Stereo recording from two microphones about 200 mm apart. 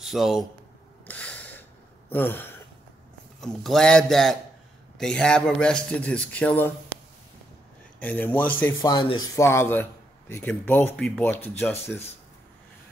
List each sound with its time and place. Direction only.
0.0 s speech: centre (ahead or behind)
1.0 s a sound: 5° left (ahead or behind)
3.3 s a man's voice: centre (ahead or behind)
8.0 s a man's voice: 10° left (ahead or behind)
8.8 s a man's voice: 25° left (ahead or behind)